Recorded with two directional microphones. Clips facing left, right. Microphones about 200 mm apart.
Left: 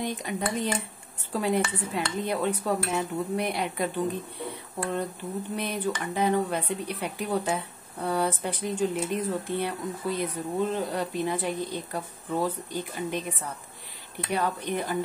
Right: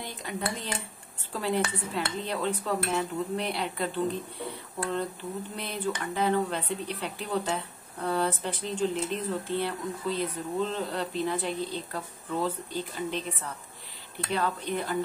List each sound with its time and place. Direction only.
0.0 s speech: 20° left (ahead or behind)
5.6 s speech: 15° left (ahead or behind)
14.3 s speech: 15° left (ahead or behind)